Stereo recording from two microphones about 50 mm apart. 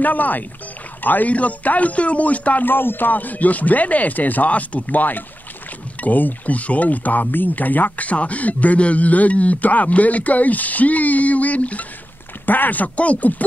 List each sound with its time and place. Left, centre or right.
0.0 s speech: left
2.6 s speech: left